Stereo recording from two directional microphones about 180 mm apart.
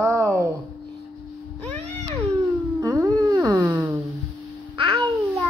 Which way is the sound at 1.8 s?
35° right (ahead or behind).